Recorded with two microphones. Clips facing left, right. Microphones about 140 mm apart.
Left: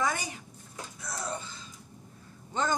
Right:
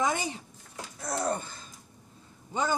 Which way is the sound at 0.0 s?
25° right (ahead or behind).